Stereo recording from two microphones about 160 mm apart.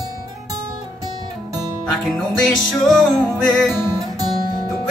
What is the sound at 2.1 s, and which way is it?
Music, centre (ahead or behind).